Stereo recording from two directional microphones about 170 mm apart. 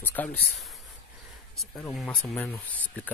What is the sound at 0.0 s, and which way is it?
Speech, 10° left (ahead or behind).